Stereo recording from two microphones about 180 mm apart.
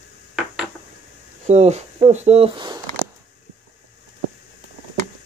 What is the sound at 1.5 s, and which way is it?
Speech, 40° right (ahead or behind).